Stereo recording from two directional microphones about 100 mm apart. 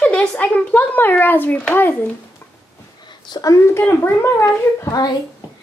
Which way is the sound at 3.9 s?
25° left (ahead or behind).